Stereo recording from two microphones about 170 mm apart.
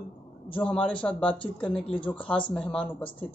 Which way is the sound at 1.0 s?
15° left (ahead or behind).